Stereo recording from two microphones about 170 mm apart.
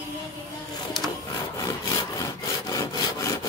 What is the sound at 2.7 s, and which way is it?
Sawing, 20° left (ahead or behind).